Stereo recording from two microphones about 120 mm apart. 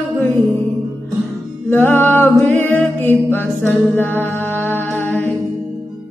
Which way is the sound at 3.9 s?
15° left (ahead or behind).